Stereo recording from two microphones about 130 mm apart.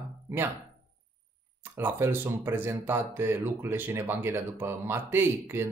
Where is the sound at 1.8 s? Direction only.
15° right (ahead or behind).